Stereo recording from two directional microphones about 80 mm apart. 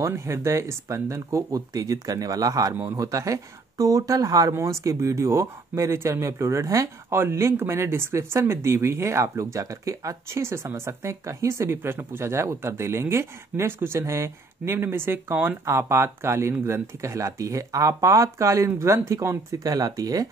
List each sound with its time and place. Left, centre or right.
0.0 s speech: right